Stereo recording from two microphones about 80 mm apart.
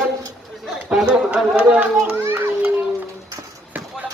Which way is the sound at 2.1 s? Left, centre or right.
Right.